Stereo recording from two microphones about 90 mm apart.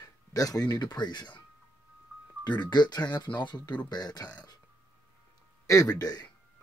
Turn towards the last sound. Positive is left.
turn(degrees=50)  # may be behind; listen again after turning